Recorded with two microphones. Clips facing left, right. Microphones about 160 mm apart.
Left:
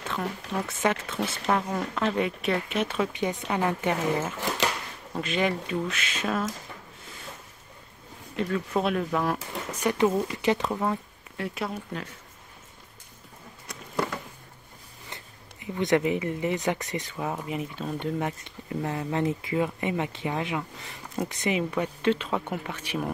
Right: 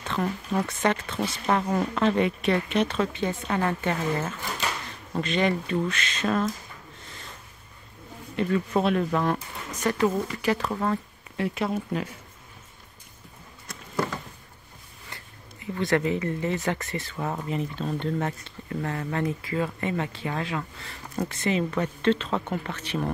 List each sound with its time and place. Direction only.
0.1 s speech: centre (ahead or behind)
5.1 s speech: 5° left (ahead or behind)
8.4 s speech: centre (ahead or behind)
9.8 s speech: 15° left (ahead or behind)
11.3 s speech: centre (ahead or behind)
13.7 s a sound: 10° left (ahead or behind)
15.0 s speech: 20° left (ahead or behind)